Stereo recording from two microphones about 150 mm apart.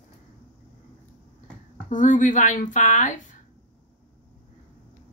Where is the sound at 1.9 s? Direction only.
60° left (ahead or behind).